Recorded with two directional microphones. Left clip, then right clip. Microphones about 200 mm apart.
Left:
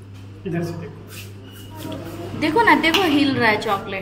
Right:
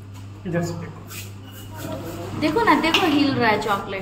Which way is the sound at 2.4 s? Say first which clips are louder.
Left 3 dB; 25° left (ahead or behind).